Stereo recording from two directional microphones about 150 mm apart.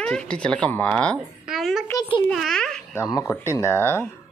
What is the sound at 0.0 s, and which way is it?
A child's voice, 5° left (ahead or behind).